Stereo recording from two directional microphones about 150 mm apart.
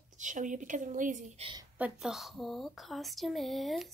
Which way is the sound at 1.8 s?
5° right (ahead or behind).